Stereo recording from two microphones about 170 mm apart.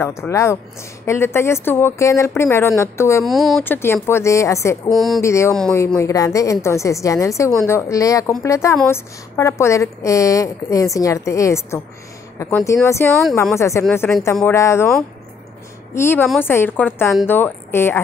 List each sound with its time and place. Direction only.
0.0 s a woman's voice: 15° left (ahead or behind)
3.3 s speech: centre (ahead or behind)
3.6 s a woman's voice: 15° left (ahead or behind)
4.9 s speech: centre (ahead or behind)
5.2 s a woman's voice: 15° left (ahead or behind)
5.5 s speech: 5° left (ahead or behind)
5.9 s a woman's voice: 20° left (ahead or behind)
15.9 s a woman's voice: 15° left (ahead or behind)